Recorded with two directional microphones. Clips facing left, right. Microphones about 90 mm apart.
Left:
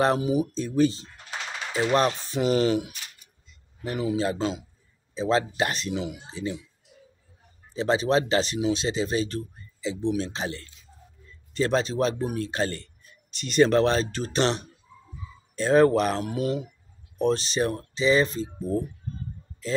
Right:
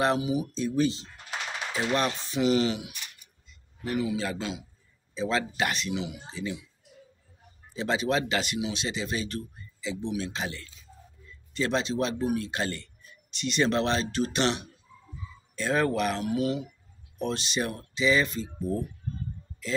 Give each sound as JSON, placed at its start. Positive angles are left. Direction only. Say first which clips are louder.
{"t": 0.0, "sound": "speech", "louder": "left 3 dB", "side_deg": 45}
{"t": 7.7, "sound": "speech", "louder": "left 4 dB", "side_deg": 35}
{"t": 19.6, "sound": "speech", "louder": "left 3 dB", "side_deg": 35}